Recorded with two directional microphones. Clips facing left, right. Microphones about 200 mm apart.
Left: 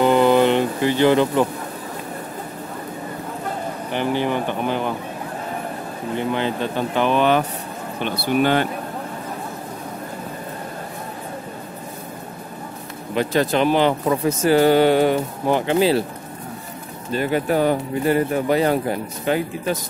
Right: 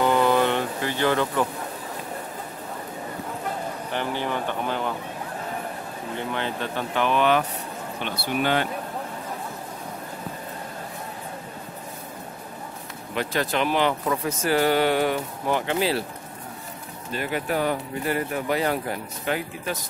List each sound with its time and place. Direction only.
0.0 s music: 25° left (ahead or behind)
3.9 s speech: 20° left (ahead or behind)
7.0 s speech: 30° left (ahead or behind)
8.0 s speech: 45° left (ahead or behind)
13.1 s speech: 25° left (ahead or behind)
17.1 s speech: 30° left (ahead or behind)